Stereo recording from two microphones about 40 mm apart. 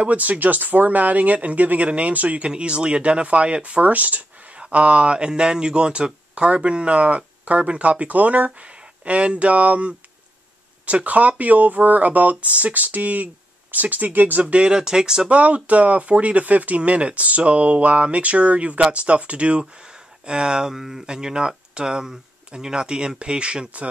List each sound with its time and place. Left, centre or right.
0.1 s speech: right
4.6 s speech: right
14.4 s speech: right
15.2 s speech: right
20.2 s speech: centre